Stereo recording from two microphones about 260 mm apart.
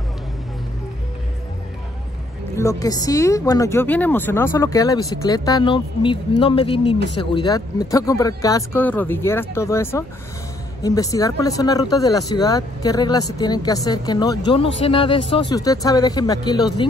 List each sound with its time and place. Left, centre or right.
2.5 s speech: centre